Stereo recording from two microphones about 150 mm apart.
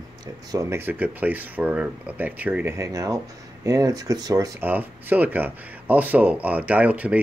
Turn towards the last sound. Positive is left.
turn(degrees=-10)  # may be behind; listen again after turning